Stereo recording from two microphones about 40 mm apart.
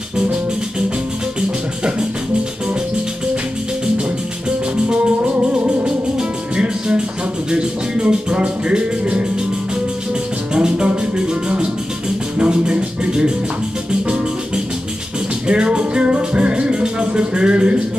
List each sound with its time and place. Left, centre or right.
4.8 s music: right
10.5 s music: right